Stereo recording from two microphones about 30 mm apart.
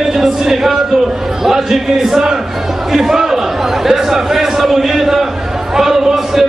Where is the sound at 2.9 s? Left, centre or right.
Centre.